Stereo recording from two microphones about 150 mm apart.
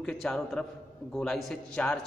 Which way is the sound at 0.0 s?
5° left (ahead or behind).